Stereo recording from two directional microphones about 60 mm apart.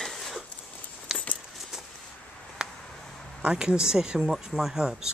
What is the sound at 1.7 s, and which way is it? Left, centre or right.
Vehicle, centre.